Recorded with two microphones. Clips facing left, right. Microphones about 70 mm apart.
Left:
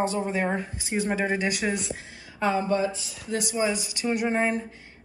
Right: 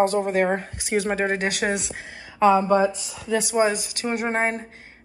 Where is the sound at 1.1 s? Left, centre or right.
Right.